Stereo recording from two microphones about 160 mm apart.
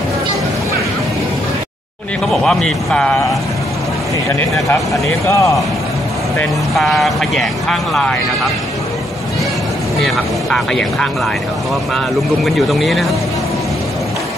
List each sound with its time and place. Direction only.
2.4 s speech: 5° left (ahead or behind)
5.2 s a man's voice: 20° left (ahead or behind)
6.7 s speech: centre (ahead or behind)
10.0 s speech: centre (ahead or behind)
12.4 s speech: centre (ahead or behind)